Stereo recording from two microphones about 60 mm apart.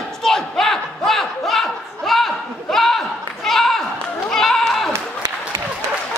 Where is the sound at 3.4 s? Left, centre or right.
Centre.